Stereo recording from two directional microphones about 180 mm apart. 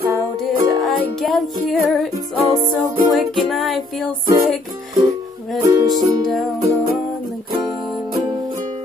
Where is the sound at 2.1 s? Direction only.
20° right (ahead or behind).